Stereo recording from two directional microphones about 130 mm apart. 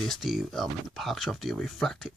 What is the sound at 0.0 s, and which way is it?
Speech, centre (ahead or behind).